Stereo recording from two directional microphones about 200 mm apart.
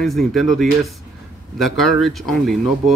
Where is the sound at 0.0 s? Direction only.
Centre (ahead or behind).